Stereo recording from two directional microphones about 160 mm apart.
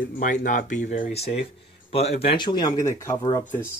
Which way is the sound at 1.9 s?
40° left (ahead or behind).